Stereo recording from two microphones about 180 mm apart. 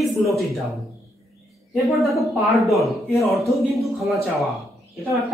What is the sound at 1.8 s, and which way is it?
Speech, centre (ahead or behind).